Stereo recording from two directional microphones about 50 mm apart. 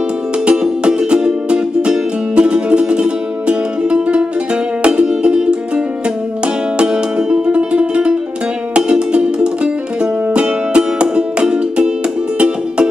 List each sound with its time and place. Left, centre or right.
0.5 s music: centre
6.8 s music: centre